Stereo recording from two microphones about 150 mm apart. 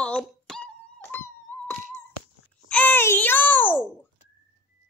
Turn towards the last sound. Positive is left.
turn(degrees=15)  # may be behind; listen again after turning